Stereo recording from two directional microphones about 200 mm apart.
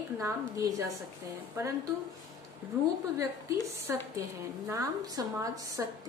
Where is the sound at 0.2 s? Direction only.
15° right (ahead or behind).